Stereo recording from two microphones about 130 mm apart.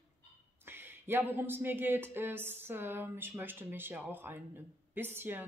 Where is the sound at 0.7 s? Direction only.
15° right (ahead or behind).